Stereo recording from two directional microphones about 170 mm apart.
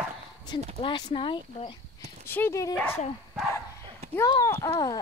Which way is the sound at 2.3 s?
15° left (ahead or behind).